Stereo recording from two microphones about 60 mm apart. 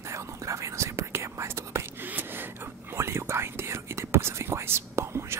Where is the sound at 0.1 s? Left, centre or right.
Right.